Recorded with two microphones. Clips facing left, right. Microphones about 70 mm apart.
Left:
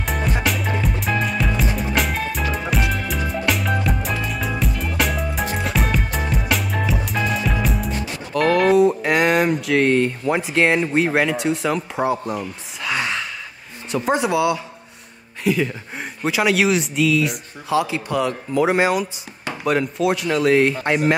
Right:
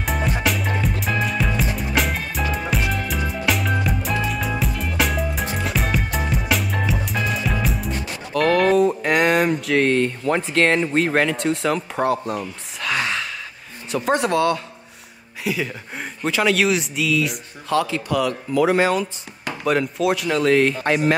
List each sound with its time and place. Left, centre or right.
0.0 s music: centre
13.9 s speech: centre
17.7 s speech: centre
18.0 s speech: left
19.4 s speech: centre